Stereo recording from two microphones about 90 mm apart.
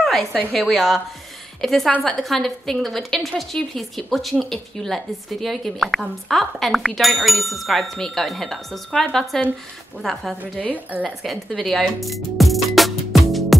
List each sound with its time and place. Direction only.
0.0 s a woman's voice: 5° left (ahead or behind)
10.7 s a woman's voice: 15° right (ahead or behind)
11.1 s music: centre (ahead or behind)